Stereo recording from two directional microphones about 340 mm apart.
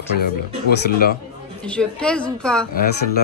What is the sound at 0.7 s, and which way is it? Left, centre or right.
Speech, left.